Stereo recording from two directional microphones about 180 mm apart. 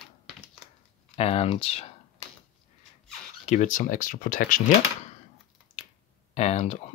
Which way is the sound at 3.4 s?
40° left (ahead or behind).